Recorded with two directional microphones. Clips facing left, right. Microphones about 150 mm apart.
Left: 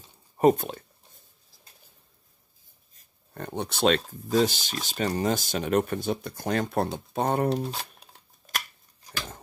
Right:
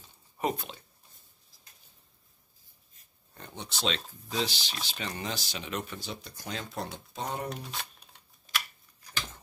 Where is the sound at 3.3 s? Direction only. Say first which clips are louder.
Left 11 dB; 60° left (ahead or behind).